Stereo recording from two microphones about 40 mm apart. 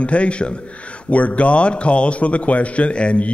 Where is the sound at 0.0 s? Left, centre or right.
Left.